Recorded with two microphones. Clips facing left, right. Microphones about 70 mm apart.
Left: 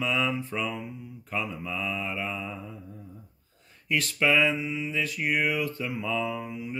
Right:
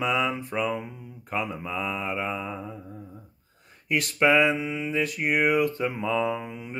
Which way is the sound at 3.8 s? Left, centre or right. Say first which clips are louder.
Right 3 dB; right.